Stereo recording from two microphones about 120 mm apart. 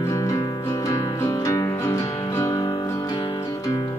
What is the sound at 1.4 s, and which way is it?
Music, 25° left (ahead or behind).